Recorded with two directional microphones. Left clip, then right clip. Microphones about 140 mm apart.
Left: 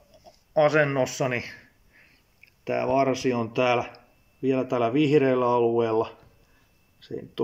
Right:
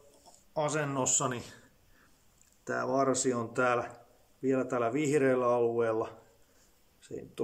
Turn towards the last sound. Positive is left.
turn(degrees=20)  # may be behind; listen again after turning